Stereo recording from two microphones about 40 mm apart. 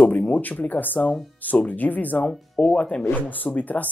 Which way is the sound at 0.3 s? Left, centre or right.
Left.